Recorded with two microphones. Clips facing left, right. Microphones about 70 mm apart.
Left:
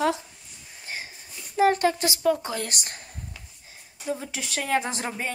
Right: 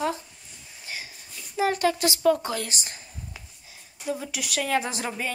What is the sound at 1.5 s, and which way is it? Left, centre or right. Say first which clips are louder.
Speech: left 3 dB; left.